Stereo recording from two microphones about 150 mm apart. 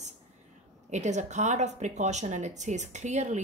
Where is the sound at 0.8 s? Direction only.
50° right (ahead or behind).